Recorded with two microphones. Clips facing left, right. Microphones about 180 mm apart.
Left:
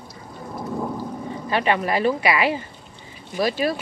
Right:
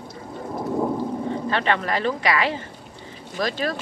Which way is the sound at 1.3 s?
10° left (ahead or behind).